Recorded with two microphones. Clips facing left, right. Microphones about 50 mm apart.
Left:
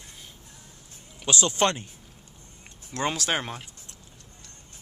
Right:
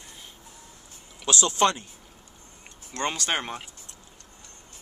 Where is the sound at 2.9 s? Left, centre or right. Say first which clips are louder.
Left 1 dB; centre.